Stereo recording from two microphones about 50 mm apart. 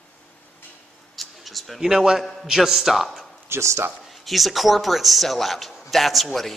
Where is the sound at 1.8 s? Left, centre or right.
Centre.